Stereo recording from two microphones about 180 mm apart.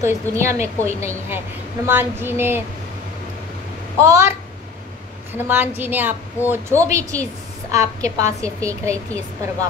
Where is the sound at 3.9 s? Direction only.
15° right (ahead or behind).